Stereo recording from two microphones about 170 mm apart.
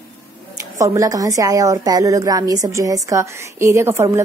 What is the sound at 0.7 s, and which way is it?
A woman's voice, 20° right (ahead or behind).